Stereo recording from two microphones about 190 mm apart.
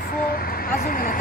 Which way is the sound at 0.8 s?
45° left (ahead or behind).